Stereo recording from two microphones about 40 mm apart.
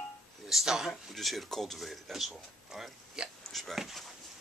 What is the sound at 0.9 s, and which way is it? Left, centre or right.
Speech, centre.